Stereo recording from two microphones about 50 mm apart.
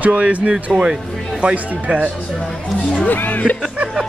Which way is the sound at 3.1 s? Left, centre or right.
Left.